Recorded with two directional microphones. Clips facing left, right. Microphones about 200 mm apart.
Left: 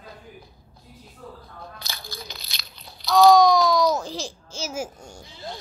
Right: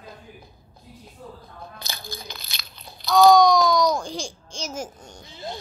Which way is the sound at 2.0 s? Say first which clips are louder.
Right 1 dB; 50° right (ahead or behind).